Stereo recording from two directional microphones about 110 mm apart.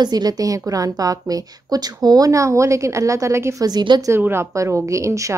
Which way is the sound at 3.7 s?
40° right (ahead or behind).